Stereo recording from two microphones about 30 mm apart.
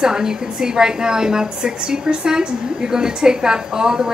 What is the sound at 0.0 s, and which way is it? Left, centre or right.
A woman's voice, right.